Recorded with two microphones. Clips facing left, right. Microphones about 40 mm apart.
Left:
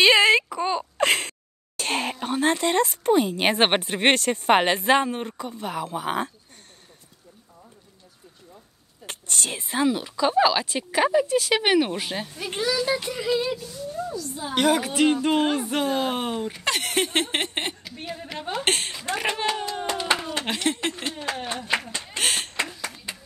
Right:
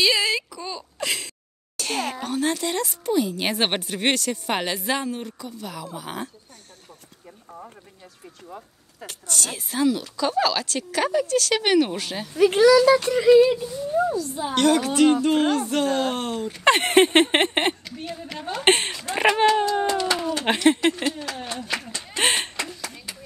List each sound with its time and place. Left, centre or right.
0.0 s whimper: left
1.8 s a sound: left
2.2 s speech: left
9.0 s speech: left; by 12.3 s centre
12.4 s speech: right
13.2 s speech: centre
14.5 s speech: centre
16.6 s speech: right
20.1 s a sound: left
20.4 s speech: right
21.3 s speech: left
22.1 s a sound: right
22.8 s clapping: left